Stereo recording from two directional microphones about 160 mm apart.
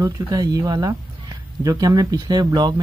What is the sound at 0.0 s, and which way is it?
Speech, 25° right (ahead or behind).